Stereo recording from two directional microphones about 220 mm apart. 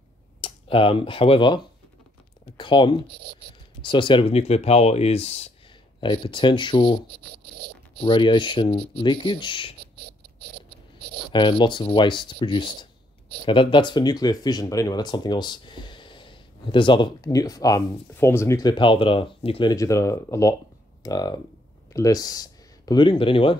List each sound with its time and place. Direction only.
0.4 s speech: 25° left (ahead or behind)
7.5 s zipper: 45° right (ahead or behind)
8.0 s speech: 20° left (ahead or behind)
11.3 s speech: 20° left (ahead or behind)